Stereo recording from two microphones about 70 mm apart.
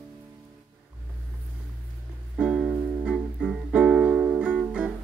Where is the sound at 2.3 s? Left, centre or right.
Centre.